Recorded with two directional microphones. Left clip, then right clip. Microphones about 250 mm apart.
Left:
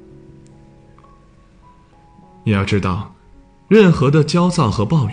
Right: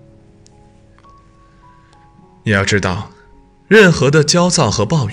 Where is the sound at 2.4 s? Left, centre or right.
Right.